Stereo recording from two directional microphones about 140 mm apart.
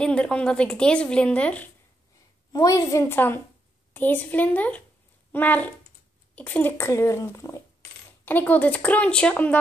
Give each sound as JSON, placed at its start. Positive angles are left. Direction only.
{"t": 0.0, "sound": "a woman's voice", "side_deg": 5}
{"t": 2.5, "sound": "a woman's voice", "side_deg": 25}